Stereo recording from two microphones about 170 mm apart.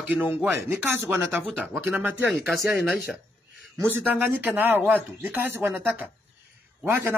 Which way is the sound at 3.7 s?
15° right (ahead or behind).